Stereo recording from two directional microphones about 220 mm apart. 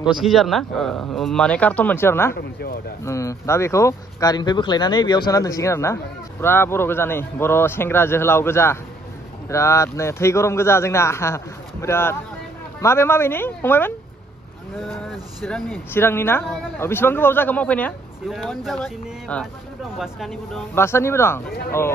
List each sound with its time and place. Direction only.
0.0 s speech: centre (ahead or behind)
2.3 s speech: 45° left (ahead or behind)
3.1 s a man's voice: 15° left (ahead or behind)
15.4 s a man's voice: 5° left (ahead or behind)
20.7 s a man's voice: 10° left (ahead or behind)
21.5 s speech: 45° left (ahead or behind)